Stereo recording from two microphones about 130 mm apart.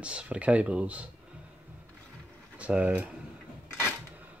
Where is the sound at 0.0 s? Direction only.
10° right (ahead or behind).